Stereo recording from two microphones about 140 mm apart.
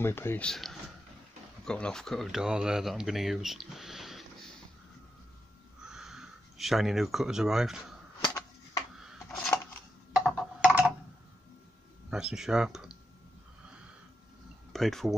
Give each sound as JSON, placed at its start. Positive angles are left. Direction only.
{"t": 0.0, "sound": "speech", "side_deg": 15}
{"t": 0.5, "sound": "speech", "side_deg": 0}
{"t": 5.9, "sound": "speech", "side_deg": -5}
{"t": 8.9, "sound": "a sound", "side_deg": 0}
{"t": 12.1, "sound": "speech", "side_deg": -5}
{"t": 14.7, "sound": "speech", "side_deg": 0}